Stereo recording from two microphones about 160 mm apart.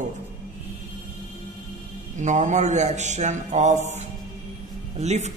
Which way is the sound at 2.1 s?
50° right (ahead or behind).